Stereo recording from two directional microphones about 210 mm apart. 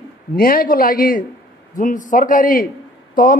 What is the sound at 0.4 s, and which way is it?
A man's voice, 45° left (ahead or behind).